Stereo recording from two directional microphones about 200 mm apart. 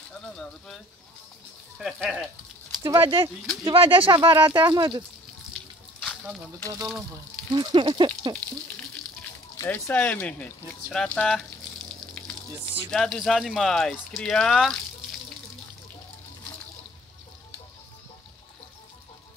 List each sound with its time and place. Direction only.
1.8 s speech: centre (ahead or behind)
2.8 s speech: 20° right (ahead or behind)
5.5 s a sound: 5° left (ahead or behind)
7.5 s speech: 25° right (ahead or behind)
8.9 s speech: 10° left (ahead or behind)
11.9 s water: 5° left (ahead or behind)
12.9 s speech: 5° left (ahead or behind)